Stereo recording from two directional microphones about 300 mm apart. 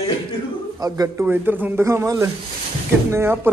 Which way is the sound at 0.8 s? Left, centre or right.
Centre.